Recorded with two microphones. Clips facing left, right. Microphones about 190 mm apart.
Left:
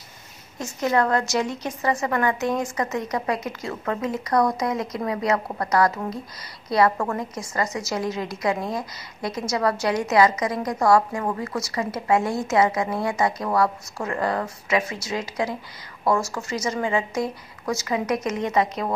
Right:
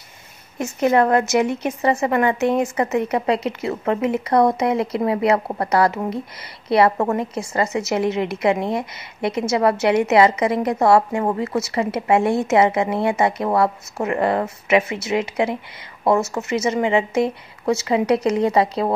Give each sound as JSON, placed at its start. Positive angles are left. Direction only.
{"t": 0.8, "sound": "a woman's voice", "side_deg": -20}